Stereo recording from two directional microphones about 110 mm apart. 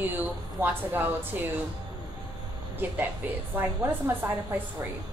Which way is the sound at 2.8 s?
20° right (ahead or behind).